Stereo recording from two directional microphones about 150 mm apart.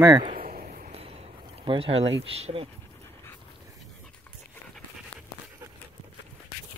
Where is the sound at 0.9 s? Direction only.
40° right (ahead or behind).